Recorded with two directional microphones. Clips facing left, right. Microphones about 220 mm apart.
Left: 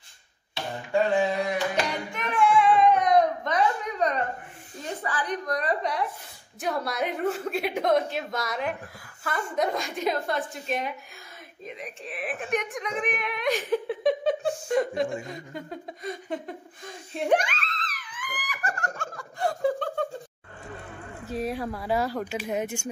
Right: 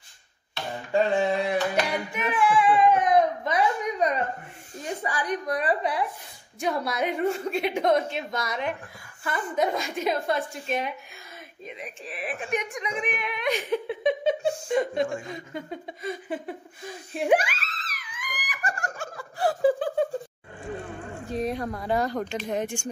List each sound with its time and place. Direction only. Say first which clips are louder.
2.1 s baby cry: left 1 dB; 5° right (ahead or behind)
4.8 s a woman's voice: right 1 dB; 15° right (ahead or behind)
15.2 s a sound: right 2 dB; centre (ahead or behind)
21.3 s a woman's voice: right 1 dB; 5° left (ahead or behind)